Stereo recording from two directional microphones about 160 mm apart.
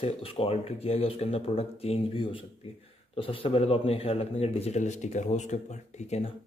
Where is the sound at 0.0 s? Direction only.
35° left (ahead or behind).